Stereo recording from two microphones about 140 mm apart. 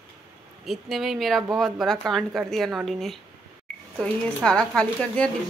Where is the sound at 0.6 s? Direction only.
Centre (ahead or behind).